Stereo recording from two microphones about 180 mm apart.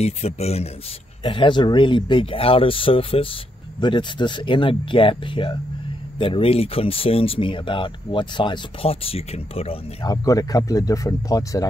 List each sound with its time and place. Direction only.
0.0 s speech: 35° left (ahead or behind)
10.0 s speech: 20° left (ahead or behind)